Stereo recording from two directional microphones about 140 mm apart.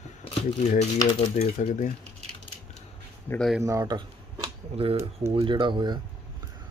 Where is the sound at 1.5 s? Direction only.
65° left (ahead or behind).